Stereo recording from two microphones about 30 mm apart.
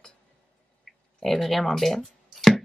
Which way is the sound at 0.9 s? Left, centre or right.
Centre.